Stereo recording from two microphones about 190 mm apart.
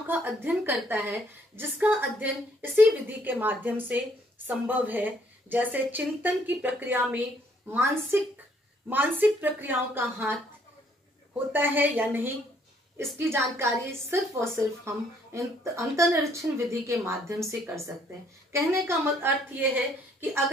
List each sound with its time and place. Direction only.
0.0 s a woman's voice: 10° right (ahead or behind)
11.5 s a woman's voice: 10° right (ahead or behind)
18.5 s a woman's voice: 15° right (ahead or behind)